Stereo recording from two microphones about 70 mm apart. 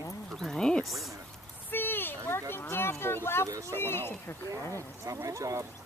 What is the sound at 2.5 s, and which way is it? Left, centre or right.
Speech, left.